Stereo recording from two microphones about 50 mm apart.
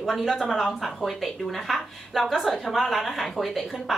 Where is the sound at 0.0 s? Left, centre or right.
Centre.